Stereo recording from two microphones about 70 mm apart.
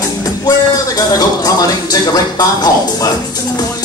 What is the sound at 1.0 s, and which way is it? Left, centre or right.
Speech, left.